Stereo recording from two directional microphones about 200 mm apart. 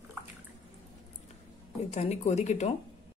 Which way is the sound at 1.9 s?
35° left (ahead or behind).